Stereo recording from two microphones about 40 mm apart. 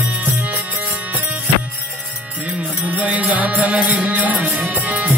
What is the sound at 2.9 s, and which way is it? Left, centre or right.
Music, right.